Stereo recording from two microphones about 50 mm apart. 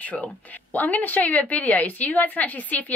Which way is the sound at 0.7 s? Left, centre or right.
Left.